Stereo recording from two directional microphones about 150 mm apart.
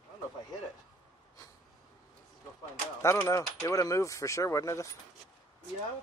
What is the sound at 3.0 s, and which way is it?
Speech, 20° left (ahead or behind).